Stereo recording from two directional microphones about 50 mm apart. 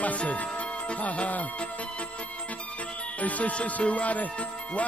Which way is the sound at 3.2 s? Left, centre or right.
Left.